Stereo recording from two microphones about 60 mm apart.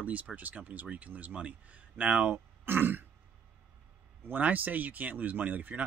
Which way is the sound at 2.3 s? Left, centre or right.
Right.